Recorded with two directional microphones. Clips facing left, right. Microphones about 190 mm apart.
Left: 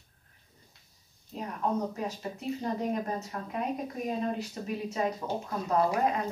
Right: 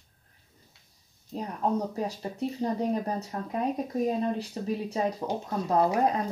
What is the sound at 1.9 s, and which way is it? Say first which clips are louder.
Speech: right 3 dB; 35° right (ahead or behind).